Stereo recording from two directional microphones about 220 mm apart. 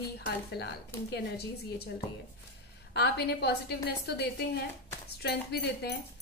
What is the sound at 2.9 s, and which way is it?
A woman's voice, 45° left (ahead or behind).